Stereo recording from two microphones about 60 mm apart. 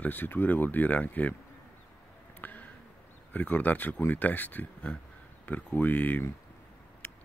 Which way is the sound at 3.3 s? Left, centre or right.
Left.